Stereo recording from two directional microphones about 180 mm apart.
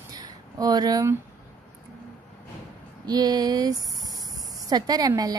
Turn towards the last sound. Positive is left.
turn(degrees=-20)  # may be behind; listen again after turning